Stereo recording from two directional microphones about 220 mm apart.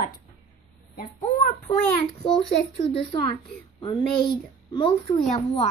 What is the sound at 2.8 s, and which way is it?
Speech, 25° left (ahead or behind).